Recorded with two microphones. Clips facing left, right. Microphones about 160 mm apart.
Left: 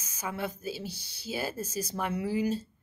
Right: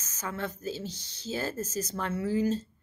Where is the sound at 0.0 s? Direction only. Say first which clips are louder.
Even; 10° left (ahead or behind).